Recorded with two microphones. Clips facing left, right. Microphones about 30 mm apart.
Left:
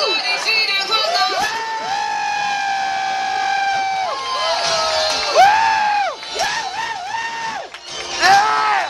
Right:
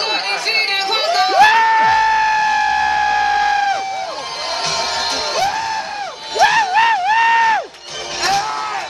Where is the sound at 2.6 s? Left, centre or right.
Centre.